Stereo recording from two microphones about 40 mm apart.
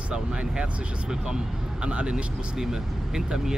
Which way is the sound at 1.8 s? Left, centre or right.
Right.